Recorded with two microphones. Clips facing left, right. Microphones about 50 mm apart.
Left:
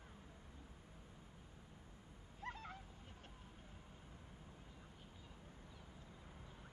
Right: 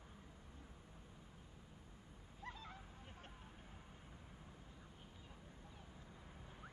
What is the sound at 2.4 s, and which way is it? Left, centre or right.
Dog, left.